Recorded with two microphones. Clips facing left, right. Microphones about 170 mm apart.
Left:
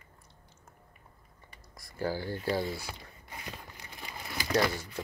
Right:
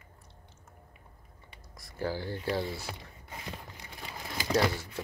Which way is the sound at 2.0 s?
Centre (ahead or behind).